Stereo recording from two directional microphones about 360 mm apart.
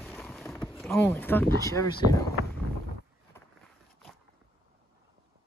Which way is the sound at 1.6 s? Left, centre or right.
Centre.